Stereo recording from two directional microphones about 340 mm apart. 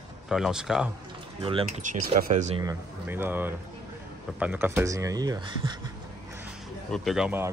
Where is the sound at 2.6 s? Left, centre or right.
Centre.